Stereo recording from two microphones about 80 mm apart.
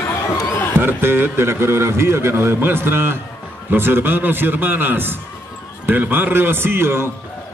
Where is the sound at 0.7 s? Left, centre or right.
Right.